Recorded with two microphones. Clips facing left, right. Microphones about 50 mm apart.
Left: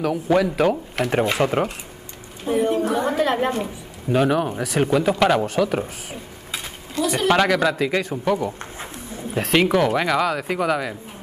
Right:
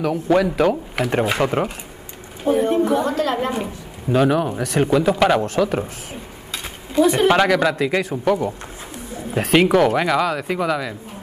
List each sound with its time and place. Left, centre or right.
0.0 s speech: centre
2.6 s speech: right
2.9 s a woman's voice: left
4.1 s speech: centre
7.0 s speech: right
7.2 s speech: centre